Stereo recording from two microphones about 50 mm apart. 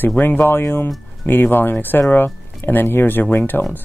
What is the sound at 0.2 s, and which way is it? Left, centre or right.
Speech, left.